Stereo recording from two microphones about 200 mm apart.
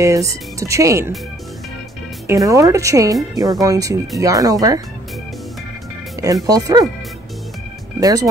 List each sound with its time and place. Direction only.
0.0 s speech: 15° right (ahead or behind)
2.2 s speech: 15° right (ahead or behind)
6.4 s speech: 20° right (ahead or behind)
8.0 s speech: 15° right (ahead or behind)